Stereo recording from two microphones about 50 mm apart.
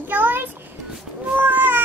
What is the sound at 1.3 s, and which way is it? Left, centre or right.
Cat, right.